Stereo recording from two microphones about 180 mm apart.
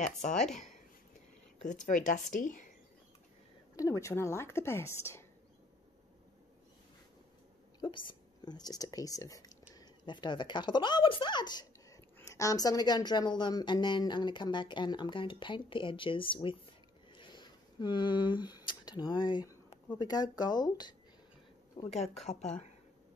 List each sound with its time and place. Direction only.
0.3 s speech: 5° left (ahead or behind)
1.6 s speech: 45° left (ahead or behind)
3.7 s a woman's voice: 15° left (ahead or behind)
7.8 s speech: 25° left (ahead or behind)
17.1 s a sound: 25° left (ahead or behind)
20.0 s speech: 20° left (ahead or behind)
22.2 s a woman's voice: 35° left (ahead or behind)